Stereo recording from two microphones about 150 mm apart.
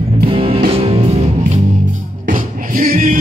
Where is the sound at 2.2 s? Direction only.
65° right (ahead or behind).